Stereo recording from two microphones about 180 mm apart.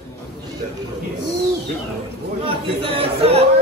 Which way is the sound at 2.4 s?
30° right (ahead or behind).